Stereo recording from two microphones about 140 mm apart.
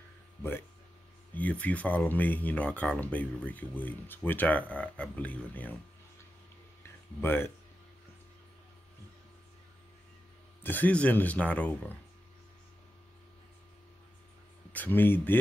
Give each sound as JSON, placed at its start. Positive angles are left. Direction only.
{"t": 0.4, "sound": "speech", "side_deg": 15}
{"t": 7.2, "sound": "speech", "side_deg": 15}
{"t": 10.6, "sound": "speech", "side_deg": 10}
{"t": 14.7, "sound": "speech", "side_deg": 15}